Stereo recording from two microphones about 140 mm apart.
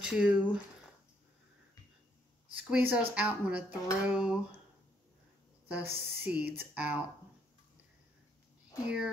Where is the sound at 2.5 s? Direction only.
10° right (ahead or behind).